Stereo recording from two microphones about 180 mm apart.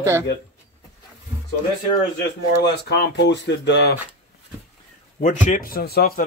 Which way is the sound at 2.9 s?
70° left (ahead or behind).